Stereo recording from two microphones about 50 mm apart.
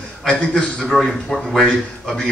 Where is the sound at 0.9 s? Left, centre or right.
Centre.